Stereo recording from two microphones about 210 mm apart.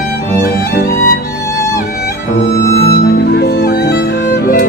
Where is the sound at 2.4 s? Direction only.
55° left (ahead or behind).